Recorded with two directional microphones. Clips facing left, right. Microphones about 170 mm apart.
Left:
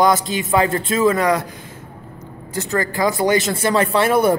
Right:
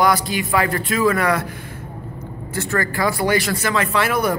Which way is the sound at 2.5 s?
15° left (ahead or behind).